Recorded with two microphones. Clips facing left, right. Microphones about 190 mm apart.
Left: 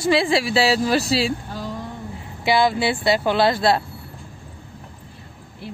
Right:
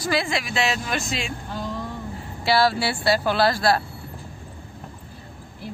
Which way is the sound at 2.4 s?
20° left (ahead or behind).